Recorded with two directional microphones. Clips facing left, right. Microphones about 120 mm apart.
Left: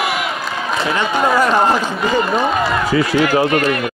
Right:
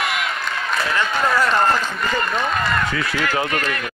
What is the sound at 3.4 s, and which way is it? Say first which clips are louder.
Speech: left 8 dB; 30° left (ahead or behind).